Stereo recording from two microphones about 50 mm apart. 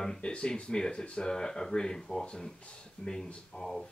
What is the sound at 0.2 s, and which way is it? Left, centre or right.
Speech, centre.